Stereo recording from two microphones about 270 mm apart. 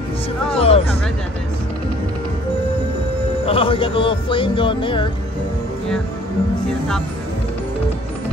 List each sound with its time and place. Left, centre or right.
0.6 s music: left
3.4 s speech: centre